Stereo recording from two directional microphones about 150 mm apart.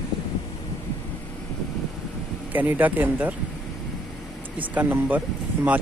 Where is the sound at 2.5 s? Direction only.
10° right (ahead or behind).